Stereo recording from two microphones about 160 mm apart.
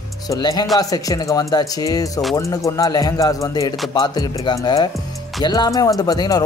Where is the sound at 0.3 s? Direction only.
25° left (ahead or behind).